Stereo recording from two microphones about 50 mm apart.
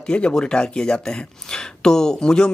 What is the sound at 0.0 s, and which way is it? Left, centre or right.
Speech, centre.